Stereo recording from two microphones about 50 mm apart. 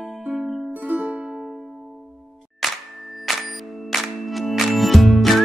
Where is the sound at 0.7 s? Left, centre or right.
Right.